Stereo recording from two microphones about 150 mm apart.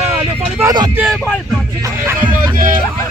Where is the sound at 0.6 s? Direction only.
25° right (ahead or behind).